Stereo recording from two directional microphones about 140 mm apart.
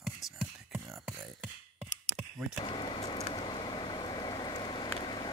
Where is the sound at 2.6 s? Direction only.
35° left (ahead or behind).